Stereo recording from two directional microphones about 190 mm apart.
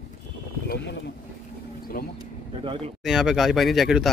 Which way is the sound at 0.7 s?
65° left (ahead or behind).